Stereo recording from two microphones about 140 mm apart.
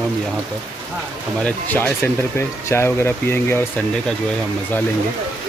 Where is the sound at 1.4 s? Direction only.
10° left (ahead or behind).